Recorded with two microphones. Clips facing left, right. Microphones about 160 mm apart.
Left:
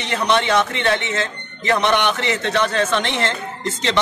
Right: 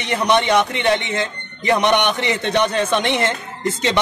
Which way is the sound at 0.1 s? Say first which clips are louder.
Right 2 dB; 15° right (ahead or behind).